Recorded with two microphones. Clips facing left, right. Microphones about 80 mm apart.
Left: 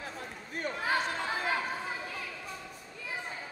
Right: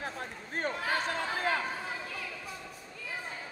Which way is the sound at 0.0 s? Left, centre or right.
Right.